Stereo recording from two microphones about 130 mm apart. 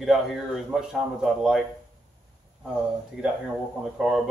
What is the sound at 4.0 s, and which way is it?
Speech, centre (ahead or behind).